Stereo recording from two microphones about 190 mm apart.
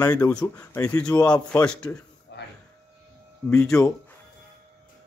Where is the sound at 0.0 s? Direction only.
20° left (ahead or behind).